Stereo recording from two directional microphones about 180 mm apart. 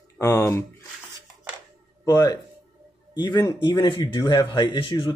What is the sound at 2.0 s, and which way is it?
Speech, 20° left (ahead or behind).